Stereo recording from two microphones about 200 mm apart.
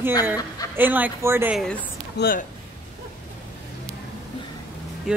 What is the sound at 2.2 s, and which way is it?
Speech, 45° left (ahead or behind).